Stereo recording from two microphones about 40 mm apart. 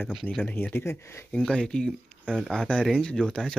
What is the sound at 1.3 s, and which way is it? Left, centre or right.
Speech, left.